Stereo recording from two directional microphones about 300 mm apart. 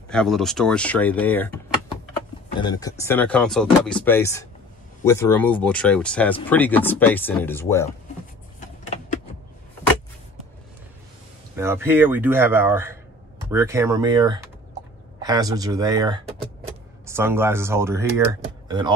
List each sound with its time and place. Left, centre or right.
0.1 s speech: centre
2.6 s speech: centre
8.5 s a sound: left
11.5 s speech: centre